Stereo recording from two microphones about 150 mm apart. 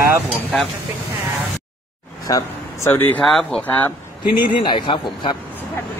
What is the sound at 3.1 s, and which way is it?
Speech, 5° left (ahead or behind).